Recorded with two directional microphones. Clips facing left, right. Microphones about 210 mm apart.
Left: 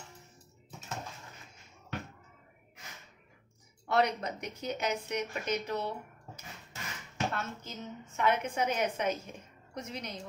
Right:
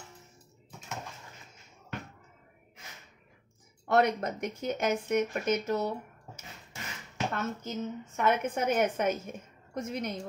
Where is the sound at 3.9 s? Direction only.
50° right (ahead or behind).